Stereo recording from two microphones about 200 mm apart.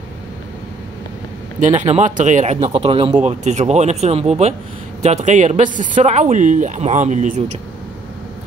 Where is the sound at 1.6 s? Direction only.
35° right (ahead or behind).